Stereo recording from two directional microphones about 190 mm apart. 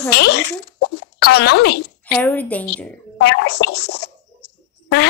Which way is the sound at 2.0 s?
10° left (ahead or behind).